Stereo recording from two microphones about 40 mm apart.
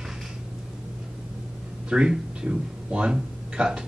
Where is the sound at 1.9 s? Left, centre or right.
Right.